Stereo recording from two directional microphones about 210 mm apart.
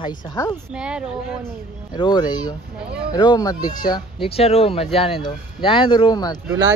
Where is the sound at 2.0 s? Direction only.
20° left (ahead or behind).